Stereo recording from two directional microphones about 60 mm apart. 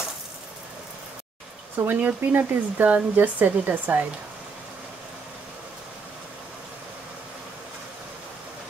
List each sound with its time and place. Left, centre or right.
1.9 s speech: right